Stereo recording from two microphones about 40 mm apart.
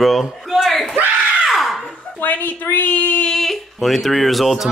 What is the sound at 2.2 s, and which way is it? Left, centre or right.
A woman's voice, left.